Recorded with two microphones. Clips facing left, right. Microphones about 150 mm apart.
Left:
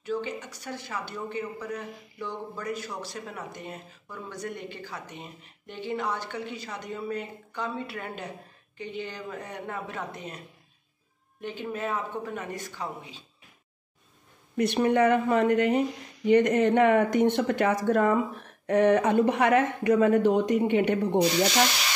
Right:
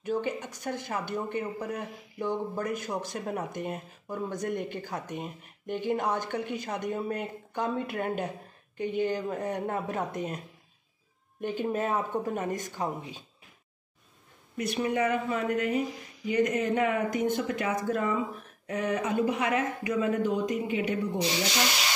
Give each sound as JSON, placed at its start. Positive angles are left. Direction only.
{"t": 0.0, "sound": "a man's voice", "side_deg": -50}
{"t": 11.4, "sound": "speech", "side_deg": -45}
{"t": 14.6, "sound": "speech", "side_deg": 65}
{"t": 15.9, "sound": "a sound", "side_deg": 0}
{"t": 16.3, "sound": "speech", "side_deg": 70}
{"t": 20.9, "sound": "speech", "side_deg": 70}